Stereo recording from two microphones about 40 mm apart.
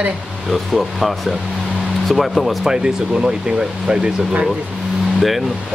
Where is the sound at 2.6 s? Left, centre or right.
Centre.